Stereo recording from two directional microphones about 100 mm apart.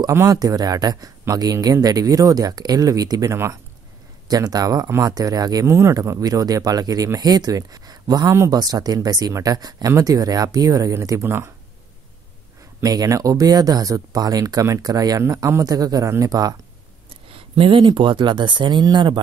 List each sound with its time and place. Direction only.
0.1 s speech: 25° right (ahead or behind)
0.4 s speech: 40° right (ahead or behind)
4.3 s speech: 40° right (ahead or behind)
5.7 s speech: 25° right (ahead or behind)
12.8 s speech: 35° right (ahead or behind)
17.3 s speech: 65° right (ahead or behind)